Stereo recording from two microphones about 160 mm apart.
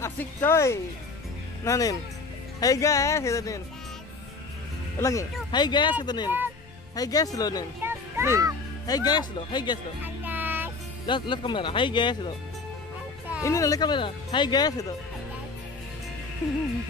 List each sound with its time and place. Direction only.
0.0 s speech: 15° left (ahead or behind)
4.9 s speech: 20° left (ahead or behind)
7.8 s music: 15° right (ahead or behind)
8.8 s speech: 25° left (ahead or behind)
10.0 s music: 10° right (ahead or behind)
11.1 s speech: 30° left (ahead or behind)
13.4 s speech: 20° left (ahead or behind)